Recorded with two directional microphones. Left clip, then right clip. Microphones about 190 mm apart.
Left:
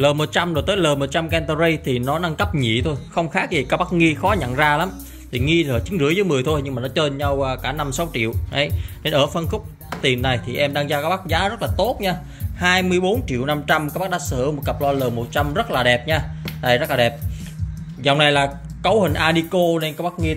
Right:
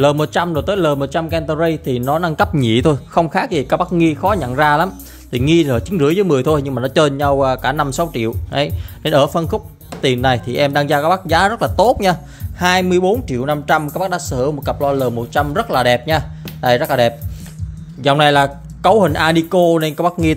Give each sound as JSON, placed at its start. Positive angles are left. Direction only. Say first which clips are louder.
{"t": 0.0, "sound": "speech", "louder": "right 4 dB", "side_deg": -20}
{"t": 2.0, "sound": "speech", "louder": "right 8 dB", "side_deg": -25}
{"t": 2.8, "sound": "speech", "louder": "right 8 dB", "side_deg": -40}
{"t": 3.3, "sound": "speech", "louder": "right 4 dB", "side_deg": -20}
{"t": 12.5, "sound": "speech", "louder": "right 4 dB", "side_deg": -25}